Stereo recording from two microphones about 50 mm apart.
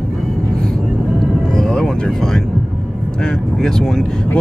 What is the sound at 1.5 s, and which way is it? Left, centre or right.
Vehicle, centre.